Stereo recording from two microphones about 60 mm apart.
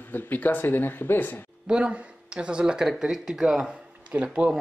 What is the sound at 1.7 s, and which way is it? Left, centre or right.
Speech, centre.